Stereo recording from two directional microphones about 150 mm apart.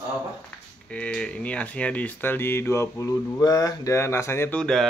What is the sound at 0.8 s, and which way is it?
Speech, 10° left (ahead or behind).